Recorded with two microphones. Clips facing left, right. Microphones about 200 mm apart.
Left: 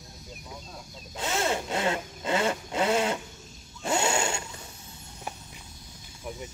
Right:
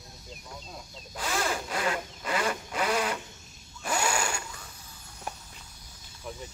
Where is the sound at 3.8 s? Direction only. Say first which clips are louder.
Left 3 dB; 25° left (ahead or behind).